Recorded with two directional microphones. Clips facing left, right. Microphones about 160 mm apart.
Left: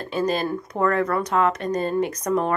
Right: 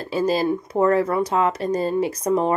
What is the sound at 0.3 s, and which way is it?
Speech, 25° right (ahead or behind).